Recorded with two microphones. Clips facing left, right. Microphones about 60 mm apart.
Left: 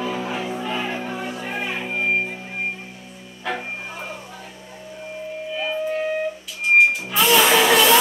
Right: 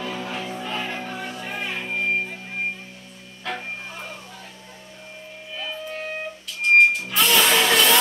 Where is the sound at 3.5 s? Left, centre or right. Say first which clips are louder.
Left 4 dB; centre.